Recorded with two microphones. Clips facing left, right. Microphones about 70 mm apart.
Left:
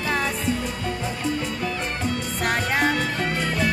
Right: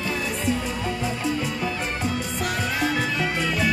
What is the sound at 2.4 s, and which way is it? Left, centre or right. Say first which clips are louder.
Music: left 4 dB; left.